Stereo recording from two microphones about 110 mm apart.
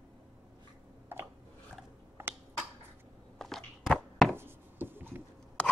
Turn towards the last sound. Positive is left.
turn(degrees=10)  # may be behind; listen again after turning